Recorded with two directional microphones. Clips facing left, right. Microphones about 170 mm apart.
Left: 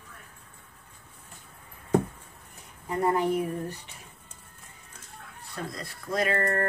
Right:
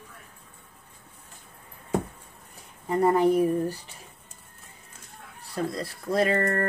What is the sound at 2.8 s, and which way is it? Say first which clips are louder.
Speech: right 5 dB; 35° right (ahead or behind).